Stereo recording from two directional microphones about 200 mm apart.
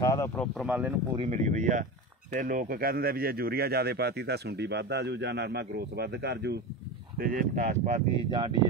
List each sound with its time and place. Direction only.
0.0 s speech: 15° left (ahead or behind)
0.7 s speech: 5° right (ahead or behind)
1.1 s speech: 30° right (ahead or behind); by 6.6 s 60° right (ahead or behind)
7.2 s speech: 45° right (ahead or behind)
8.3 s speech: 20° right (ahead or behind)